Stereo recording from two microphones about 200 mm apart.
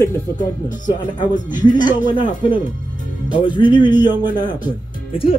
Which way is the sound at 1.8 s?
25° left (ahead or behind).